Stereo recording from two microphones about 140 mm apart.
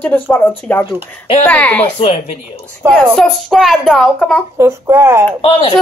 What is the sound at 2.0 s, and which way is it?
Speech, 45° left (ahead or behind).